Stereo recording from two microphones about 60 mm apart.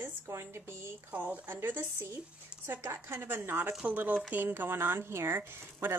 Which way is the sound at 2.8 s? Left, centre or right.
Right.